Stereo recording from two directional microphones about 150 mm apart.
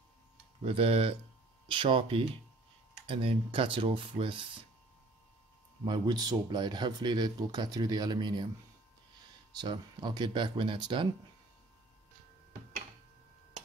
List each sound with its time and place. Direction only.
0.7 s speech: 40° right (ahead or behind)
5.9 s speech: 30° right (ahead or behind)
9.6 s speech: 30° right (ahead or behind)